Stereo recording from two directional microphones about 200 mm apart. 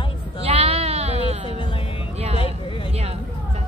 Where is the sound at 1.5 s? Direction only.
25° left (ahead or behind).